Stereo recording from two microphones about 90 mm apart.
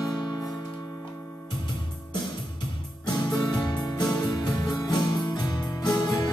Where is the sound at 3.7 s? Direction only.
50° left (ahead or behind).